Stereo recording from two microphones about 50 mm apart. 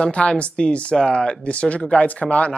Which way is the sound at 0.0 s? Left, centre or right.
Centre.